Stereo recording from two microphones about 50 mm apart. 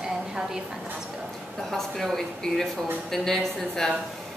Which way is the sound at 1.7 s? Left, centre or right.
Centre.